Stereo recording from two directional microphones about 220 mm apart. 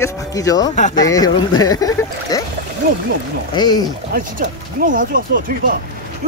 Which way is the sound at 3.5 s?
20° left (ahead or behind).